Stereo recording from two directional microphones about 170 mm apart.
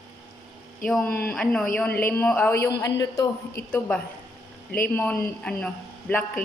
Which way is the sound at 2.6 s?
20° left (ahead or behind).